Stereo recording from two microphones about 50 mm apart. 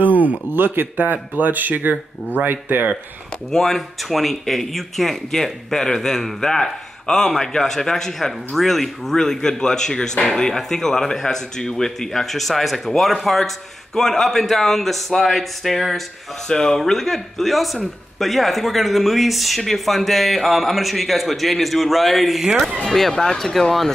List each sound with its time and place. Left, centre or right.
0.0 s speech: right
3.5 s a man's voice: centre
16.4 s a man's voice: centre